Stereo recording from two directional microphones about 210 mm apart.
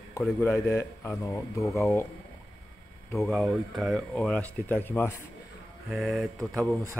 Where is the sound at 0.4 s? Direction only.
10° left (ahead or behind).